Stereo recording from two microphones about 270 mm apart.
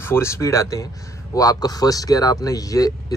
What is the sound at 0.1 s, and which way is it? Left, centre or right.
Speech, centre.